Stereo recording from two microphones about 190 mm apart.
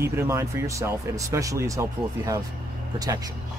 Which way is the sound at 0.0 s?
15° right (ahead or behind).